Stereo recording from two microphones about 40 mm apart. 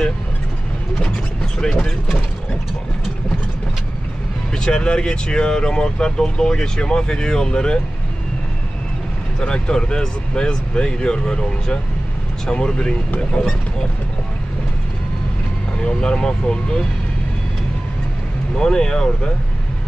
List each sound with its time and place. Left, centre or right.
1.4 s speech: centre
4.6 s speech: left
9.4 s speech: left
15.8 s speech: left
18.6 s speech: centre